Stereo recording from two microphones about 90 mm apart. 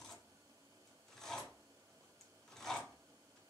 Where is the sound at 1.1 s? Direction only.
5° left (ahead or behind).